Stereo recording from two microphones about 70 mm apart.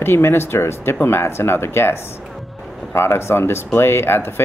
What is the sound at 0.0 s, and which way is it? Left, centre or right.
Speech, left.